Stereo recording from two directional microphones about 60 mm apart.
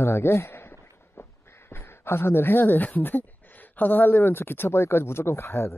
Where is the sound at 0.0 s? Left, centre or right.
Left.